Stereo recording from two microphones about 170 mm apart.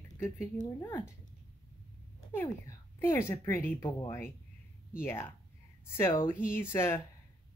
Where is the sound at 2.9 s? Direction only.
15° left (ahead or behind).